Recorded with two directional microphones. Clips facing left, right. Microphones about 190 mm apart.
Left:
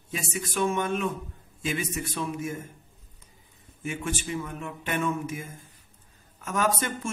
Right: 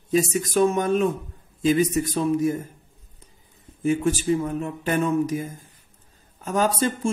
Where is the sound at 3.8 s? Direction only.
35° right (ahead or behind).